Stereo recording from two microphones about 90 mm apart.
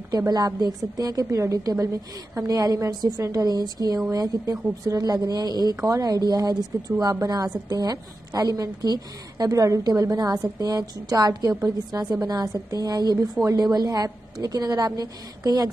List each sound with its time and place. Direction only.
0.3 s a woman's voice: 50° right (ahead or behind)